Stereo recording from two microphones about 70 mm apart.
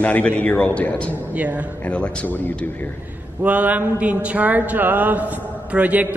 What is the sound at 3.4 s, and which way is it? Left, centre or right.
A man's voice, right.